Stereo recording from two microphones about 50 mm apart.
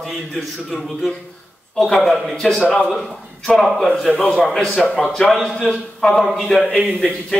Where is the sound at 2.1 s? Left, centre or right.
Centre.